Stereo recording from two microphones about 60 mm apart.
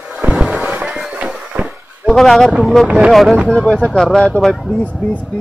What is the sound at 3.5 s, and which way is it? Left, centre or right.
Speech, centre.